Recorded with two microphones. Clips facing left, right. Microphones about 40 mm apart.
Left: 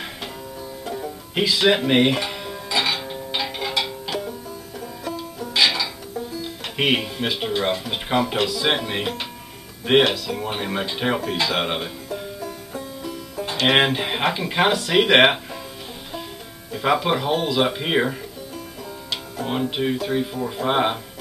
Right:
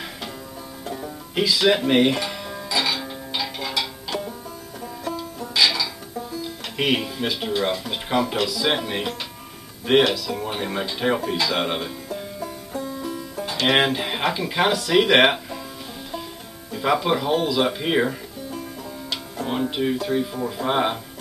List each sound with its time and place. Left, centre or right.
1.3 s music: centre
4.1 s music: centre
5.5 s music: centre
6.4 s speech: centre
12.4 s music: centre
13.5 s speech: centre
16.7 s speech: centre
19.4 s speech: centre